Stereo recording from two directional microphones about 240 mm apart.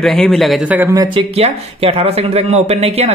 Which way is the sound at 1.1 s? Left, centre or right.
Right.